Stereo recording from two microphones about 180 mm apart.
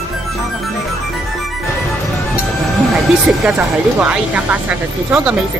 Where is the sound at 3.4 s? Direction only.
5° right (ahead or behind).